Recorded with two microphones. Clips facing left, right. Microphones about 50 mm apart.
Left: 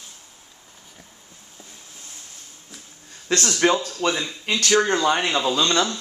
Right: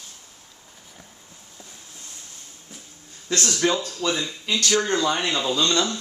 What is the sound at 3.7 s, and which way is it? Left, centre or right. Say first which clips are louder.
Speech: left 2 dB; centre.